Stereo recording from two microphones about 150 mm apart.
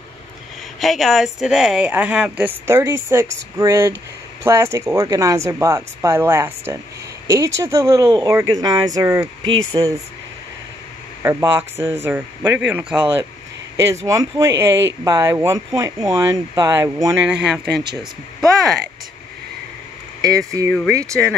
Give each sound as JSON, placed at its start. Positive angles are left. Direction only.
{"t": 0.7, "sound": "speech", "side_deg": 0}
{"t": 11.2, "sound": "speech", "side_deg": -15}
{"t": 14.0, "sound": "speech", "side_deg": -20}
{"t": 17.3, "sound": "speech", "side_deg": -5}
{"t": 20.2, "sound": "speech", "side_deg": -20}